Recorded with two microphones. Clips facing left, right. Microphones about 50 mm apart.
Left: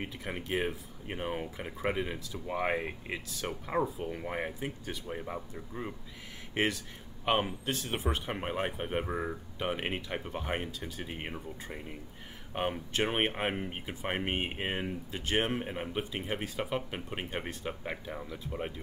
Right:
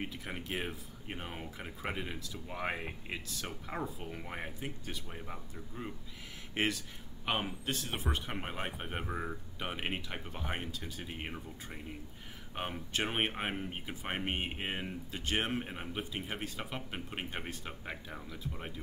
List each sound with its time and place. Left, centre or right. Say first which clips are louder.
0.1 s speech: left 5 dB; centre
1.9 s speech: left 6 dB; centre
6.5 s speech: left 3 dB; centre
9.6 s speech: left 4 dB; centre
12.9 s speech: left 2 dB; centre
15.0 s speech: left 3 dB; centre